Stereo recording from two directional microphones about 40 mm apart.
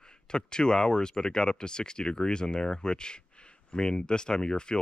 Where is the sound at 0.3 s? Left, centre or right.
Left.